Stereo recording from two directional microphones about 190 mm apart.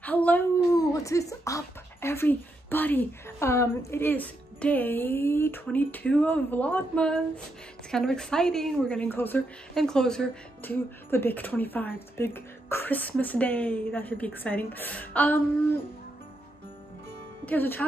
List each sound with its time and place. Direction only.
0.0 s a woman's voice: 10° left (ahead or behind)
17.5 s a woman's voice: 10° left (ahead or behind)